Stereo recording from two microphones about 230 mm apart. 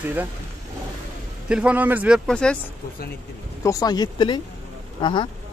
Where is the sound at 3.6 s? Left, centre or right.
Centre.